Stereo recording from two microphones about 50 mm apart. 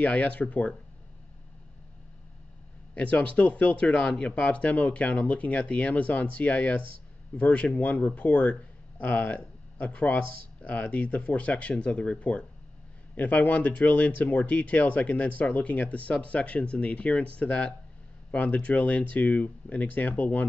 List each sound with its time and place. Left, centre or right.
0.0 s speech: left
2.9 s speech: left